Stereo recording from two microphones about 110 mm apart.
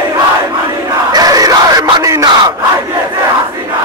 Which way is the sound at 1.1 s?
35° right (ahead or behind).